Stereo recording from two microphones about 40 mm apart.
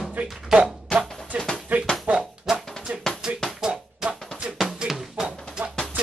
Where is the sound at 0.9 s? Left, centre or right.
Left.